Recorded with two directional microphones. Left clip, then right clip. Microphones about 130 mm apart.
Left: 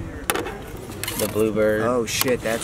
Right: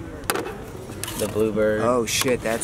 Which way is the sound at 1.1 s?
Centre (ahead or behind).